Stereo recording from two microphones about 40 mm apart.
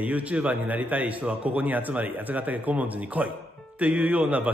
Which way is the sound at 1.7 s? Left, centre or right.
Right.